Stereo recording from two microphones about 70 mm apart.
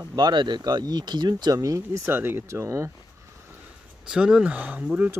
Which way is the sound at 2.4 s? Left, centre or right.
Right.